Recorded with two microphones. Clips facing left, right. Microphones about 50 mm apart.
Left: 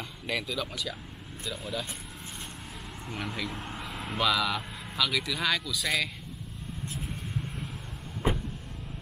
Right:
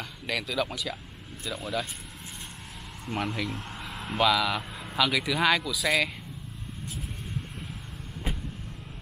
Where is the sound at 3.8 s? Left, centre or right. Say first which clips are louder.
Right 4 dB; centre.